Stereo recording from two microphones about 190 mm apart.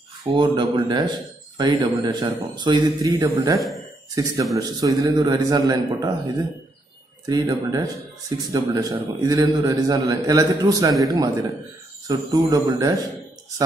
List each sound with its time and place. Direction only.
0.3 s a man's voice: 25° right (ahead or behind)
12.1 s a man's voice: 20° right (ahead or behind)